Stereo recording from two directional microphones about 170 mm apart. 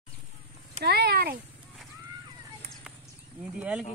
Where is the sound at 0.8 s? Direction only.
70° right (ahead or behind).